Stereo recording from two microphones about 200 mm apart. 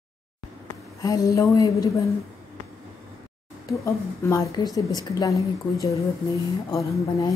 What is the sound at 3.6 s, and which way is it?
A woman's voice, 15° left (ahead or behind).